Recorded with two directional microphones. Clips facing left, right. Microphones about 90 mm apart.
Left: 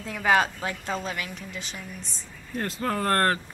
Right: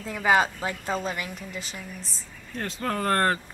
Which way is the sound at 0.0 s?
Centre (ahead or behind).